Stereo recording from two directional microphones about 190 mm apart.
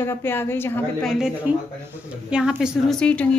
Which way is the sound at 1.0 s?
5° right (ahead or behind).